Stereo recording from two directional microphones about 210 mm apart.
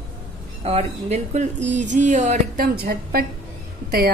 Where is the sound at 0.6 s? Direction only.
30° right (ahead or behind); by 3.2 s 45° right (ahead or behind).